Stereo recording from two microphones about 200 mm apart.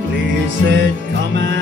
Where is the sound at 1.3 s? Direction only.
60° right (ahead or behind).